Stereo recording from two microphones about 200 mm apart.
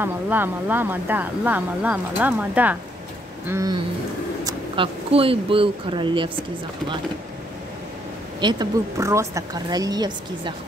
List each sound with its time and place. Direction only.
0.0 s speech: 10° right (ahead or behind)
8.4 s a woman's voice: 20° right (ahead or behind)